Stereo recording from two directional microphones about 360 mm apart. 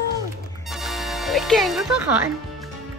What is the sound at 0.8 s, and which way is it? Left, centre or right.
Music, centre.